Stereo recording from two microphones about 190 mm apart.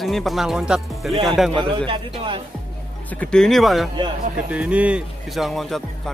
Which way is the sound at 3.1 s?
5° left (ahead or behind).